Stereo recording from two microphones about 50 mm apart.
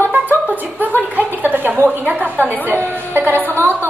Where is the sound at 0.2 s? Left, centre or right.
Right.